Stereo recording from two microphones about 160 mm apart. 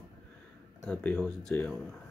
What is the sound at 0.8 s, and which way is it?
Speech, 10° left (ahead or behind).